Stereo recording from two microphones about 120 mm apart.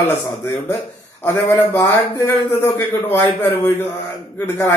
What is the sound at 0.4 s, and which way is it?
A man's voice, 15° left (ahead or behind).